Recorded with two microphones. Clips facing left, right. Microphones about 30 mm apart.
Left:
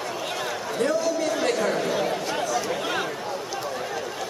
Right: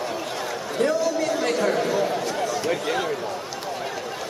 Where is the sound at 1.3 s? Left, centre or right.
Centre.